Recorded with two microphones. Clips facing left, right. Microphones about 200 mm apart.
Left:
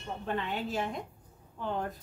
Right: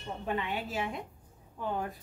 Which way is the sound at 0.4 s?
10° right (ahead or behind).